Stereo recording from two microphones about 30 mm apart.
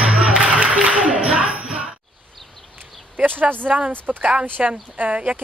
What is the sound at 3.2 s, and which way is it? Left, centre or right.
Speech, right.